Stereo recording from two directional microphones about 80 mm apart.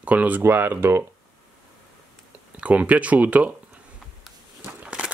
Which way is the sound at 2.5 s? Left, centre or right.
Centre.